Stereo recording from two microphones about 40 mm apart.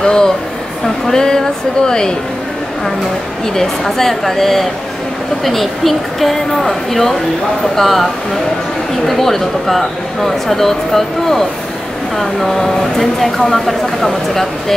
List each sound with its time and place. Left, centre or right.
0.0 s speech: centre
3.5 s speech: centre